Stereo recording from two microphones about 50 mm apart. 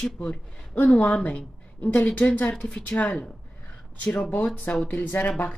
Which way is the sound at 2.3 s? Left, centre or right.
Left.